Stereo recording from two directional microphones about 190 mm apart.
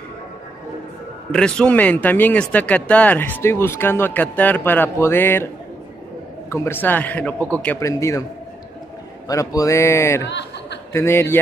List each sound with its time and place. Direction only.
1.3 s speech: 5° left (ahead or behind)
6.5 s speech: 10° left (ahead or behind)
9.3 s speech: 20° left (ahead or behind)
10.2 s chuckle: 65° left (ahead or behind)
10.9 s speech: 15° left (ahead or behind)